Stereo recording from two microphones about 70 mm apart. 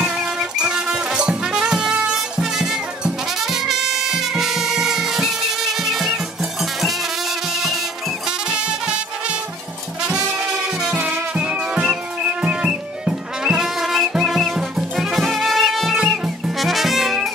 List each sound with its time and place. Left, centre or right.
0.0 s music: centre
10.0 s brass instrument: centre
11.0 s music: right; by 17.3 s centre